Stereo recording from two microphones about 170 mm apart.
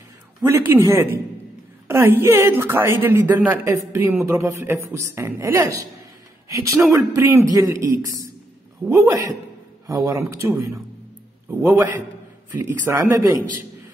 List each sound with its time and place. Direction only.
0.5 s a woman's voice: 15° right (ahead or behind)
11.4 s a woman's voice: 10° right (ahead or behind)